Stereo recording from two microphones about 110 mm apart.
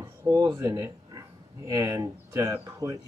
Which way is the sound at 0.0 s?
20° right (ahead or behind).